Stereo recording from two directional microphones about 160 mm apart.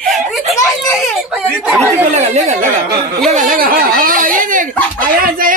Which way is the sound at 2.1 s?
45° right (ahead or behind).